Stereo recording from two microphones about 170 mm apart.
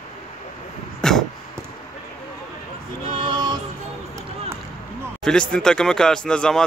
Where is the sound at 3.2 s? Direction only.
25° right (ahead or behind).